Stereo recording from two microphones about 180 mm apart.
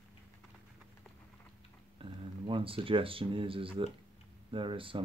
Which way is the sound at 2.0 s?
30° right (ahead or behind).